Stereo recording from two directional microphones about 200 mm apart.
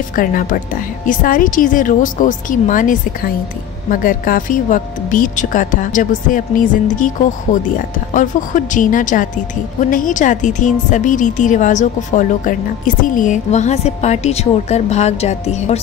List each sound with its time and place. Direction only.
0.1 s a woman's voice: 45° left (ahead or behind)